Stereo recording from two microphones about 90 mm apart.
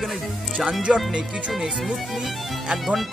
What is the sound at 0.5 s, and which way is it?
Speech, centre (ahead or behind).